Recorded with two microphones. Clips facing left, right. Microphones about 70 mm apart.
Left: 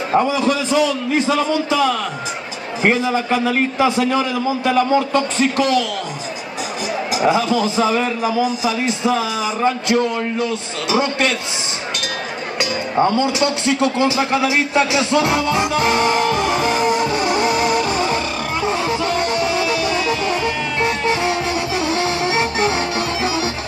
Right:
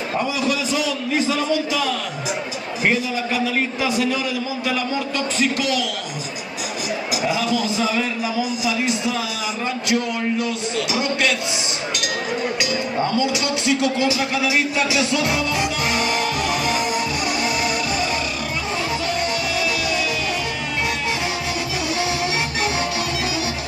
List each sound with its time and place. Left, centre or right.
0.1 s a man's voice: left
2.8 s a man's voice: left
7.2 s a man's voice: left
13.0 s a man's voice: left
19.0 s music: left
21.8 s music: left